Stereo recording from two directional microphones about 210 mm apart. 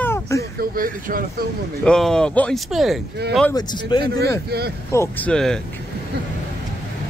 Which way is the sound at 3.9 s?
20° left (ahead or behind).